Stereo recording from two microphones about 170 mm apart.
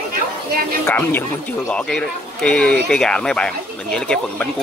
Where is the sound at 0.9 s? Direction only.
10° left (ahead or behind).